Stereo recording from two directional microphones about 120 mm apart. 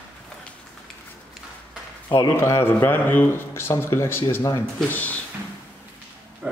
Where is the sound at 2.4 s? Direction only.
20° left (ahead or behind).